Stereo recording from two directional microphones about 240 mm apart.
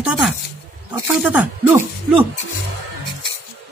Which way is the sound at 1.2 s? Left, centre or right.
Centre.